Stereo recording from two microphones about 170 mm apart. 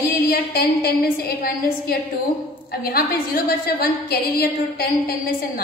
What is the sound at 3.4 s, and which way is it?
A woman's voice, 65° left (ahead or behind).